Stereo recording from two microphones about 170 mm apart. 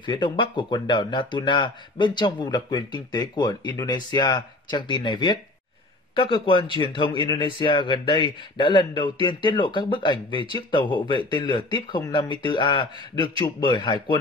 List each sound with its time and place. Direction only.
0.0 s speech: 30° left (ahead or behind)